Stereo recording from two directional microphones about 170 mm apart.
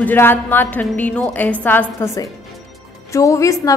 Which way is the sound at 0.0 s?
10° left (ahead or behind).